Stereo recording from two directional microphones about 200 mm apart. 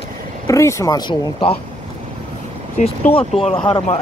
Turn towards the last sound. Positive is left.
turn(degrees=25)  # may be behind; listen again after turning